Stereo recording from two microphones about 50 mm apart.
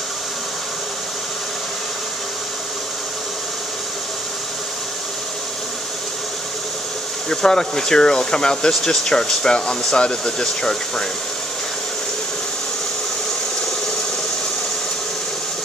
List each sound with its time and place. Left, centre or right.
7.2 s speech: centre